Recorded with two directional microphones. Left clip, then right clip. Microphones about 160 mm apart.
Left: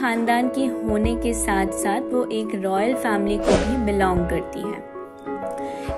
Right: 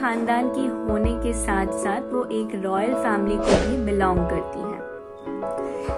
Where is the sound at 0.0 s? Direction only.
30° left (ahead or behind).